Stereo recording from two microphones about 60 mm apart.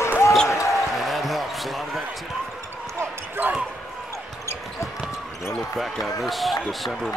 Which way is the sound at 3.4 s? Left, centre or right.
Right.